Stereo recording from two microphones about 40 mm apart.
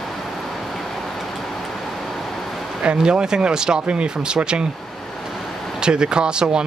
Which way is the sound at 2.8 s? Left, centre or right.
Right.